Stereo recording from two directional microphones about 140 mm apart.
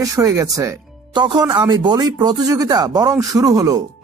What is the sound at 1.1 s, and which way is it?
Speech, 30° right (ahead or behind).